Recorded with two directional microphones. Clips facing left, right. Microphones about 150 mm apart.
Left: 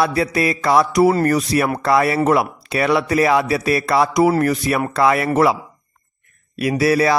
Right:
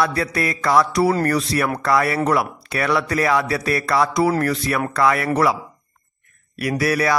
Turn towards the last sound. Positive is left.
turn(degrees=25)  # may be behind; listen again after turning